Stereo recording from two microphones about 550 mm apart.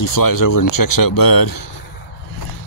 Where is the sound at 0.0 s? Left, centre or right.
Left.